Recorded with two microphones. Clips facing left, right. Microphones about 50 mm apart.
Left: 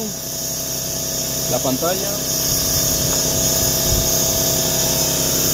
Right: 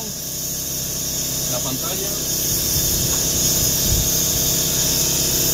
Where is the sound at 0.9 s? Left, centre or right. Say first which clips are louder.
Left 3 dB; left.